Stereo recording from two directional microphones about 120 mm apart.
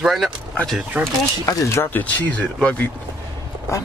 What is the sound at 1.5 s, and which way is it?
Speech, 25° left (ahead or behind).